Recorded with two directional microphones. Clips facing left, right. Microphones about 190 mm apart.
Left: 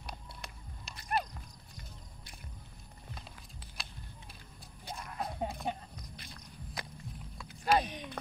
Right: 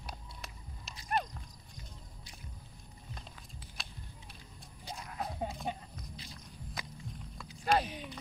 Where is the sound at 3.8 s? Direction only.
Centre (ahead or behind).